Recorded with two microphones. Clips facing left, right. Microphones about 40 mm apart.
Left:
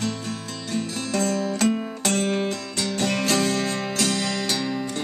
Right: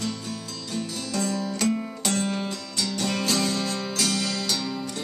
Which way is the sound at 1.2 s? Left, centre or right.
Left.